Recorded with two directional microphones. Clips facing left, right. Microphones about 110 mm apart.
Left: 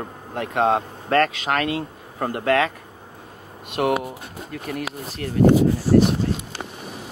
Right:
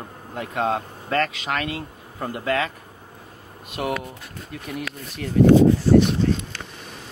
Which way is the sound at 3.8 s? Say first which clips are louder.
Left 5 dB; 50° left (ahead or behind).